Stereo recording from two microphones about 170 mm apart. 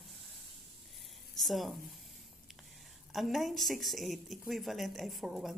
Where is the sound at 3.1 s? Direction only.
Centre (ahead or behind).